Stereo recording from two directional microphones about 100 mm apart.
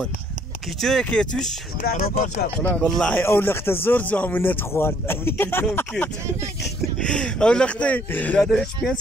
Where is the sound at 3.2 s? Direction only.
20° left (ahead or behind).